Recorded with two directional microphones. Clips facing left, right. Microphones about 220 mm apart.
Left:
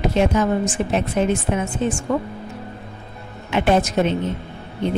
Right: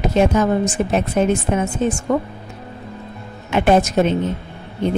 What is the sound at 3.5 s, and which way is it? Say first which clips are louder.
Speech: right 3 dB; 45° right (ahead or behind).